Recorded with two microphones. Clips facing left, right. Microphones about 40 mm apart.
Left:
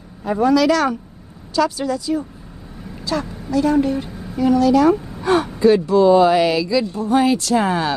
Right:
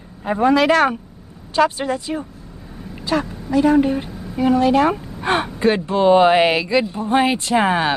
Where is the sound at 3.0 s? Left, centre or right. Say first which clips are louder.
Right 2 dB; right.